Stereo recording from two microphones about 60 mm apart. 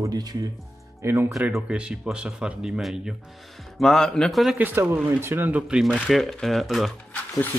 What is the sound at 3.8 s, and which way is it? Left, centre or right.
Speech, centre.